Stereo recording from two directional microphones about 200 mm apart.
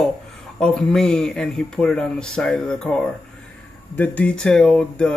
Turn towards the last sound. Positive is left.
turn(degrees=5)  # may be behind; listen again after turning